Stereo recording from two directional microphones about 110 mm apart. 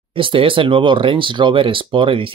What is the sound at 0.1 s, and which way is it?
Speech, 55° right (ahead or behind).